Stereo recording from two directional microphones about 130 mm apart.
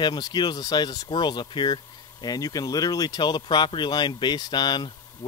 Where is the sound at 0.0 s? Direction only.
30° left (ahead or behind).